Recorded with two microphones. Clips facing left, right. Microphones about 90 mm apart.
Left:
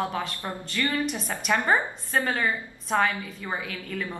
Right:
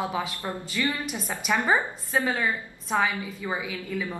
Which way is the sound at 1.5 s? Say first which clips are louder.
Even; 15° right (ahead or behind).